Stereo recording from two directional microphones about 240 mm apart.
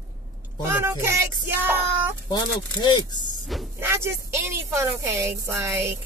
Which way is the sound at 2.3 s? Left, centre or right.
Centre.